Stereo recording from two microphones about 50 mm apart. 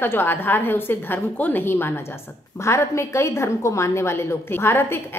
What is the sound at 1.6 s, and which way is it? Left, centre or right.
Speech, left.